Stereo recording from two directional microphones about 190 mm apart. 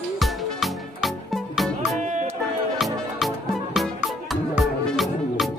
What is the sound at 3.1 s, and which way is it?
Music, centre (ahead or behind).